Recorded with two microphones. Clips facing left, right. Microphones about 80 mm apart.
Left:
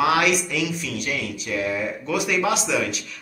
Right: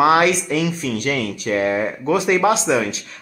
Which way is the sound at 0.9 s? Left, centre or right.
Right.